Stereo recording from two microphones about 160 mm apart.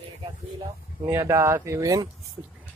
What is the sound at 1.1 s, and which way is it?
Speech, 15° right (ahead or behind).